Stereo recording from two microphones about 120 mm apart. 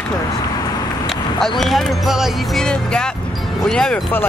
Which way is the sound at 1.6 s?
5° left (ahead or behind).